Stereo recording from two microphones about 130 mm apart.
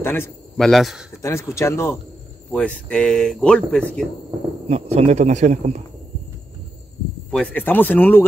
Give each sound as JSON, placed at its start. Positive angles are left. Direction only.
{"t": 0.0, "sound": "cricket", "side_deg": 20}
{"t": 0.6, "sound": "speech", "side_deg": 0}
{"t": 1.2, "sound": "speech", "side_deg": 20}
{"t": 2.5, "sound": "speech", "side_deg": 10}
{"t": 4.6, "sound": "speech", "side_deg": -50}
{"t": 7.2, "sound": "speech", "side_deg": 10}